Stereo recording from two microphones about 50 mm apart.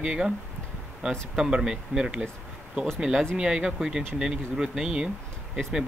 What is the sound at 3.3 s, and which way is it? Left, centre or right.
Speech, centre.